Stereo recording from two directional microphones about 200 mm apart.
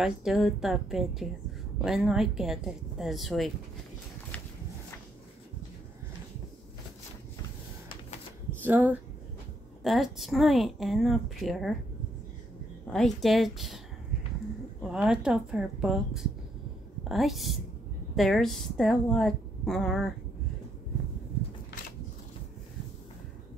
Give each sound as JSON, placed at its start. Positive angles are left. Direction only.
{"t": 0.0, "sound": "speech", "side_deg": 0}
{"t": 8.6, "sound": "speech", "side_deg": -10}
{"t": 12.9, "sound": "speech", "side_deg": 0}
{"t": 14.8, "sound": "speech", "side_deg": -5}